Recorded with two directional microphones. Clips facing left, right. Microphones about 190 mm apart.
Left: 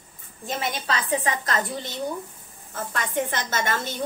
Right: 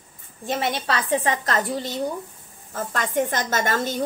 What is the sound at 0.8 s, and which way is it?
A woman's voice, 40° right (ahead or behind).